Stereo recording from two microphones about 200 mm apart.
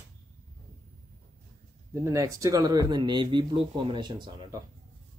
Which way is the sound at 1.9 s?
15° right (ahead or behind).